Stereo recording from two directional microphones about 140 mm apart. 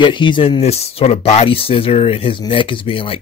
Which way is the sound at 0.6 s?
50° left (ahead or behind).